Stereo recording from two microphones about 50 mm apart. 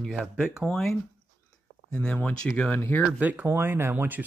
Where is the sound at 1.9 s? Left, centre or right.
Centre.